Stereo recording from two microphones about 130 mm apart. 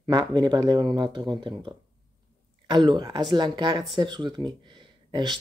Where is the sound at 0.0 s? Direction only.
30° right (ahead or behind).